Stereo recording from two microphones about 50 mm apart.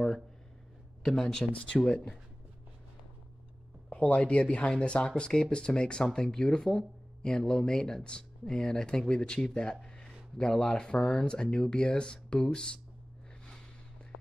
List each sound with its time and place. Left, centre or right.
1.0 s speech: centre
3.9 s speech: left
9.8 s a sound: centre
10.3 s speech: centre